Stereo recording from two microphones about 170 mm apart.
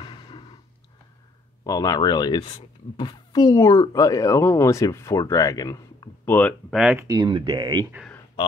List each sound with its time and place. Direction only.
0.0 s a sound: 25° left (ahead or behind)
1.6 s speech: 20° left (ahead or behind)
6.7 s speech: 5° right (ahead or behind)
7.1 s speech: 25° right (ahead or behind)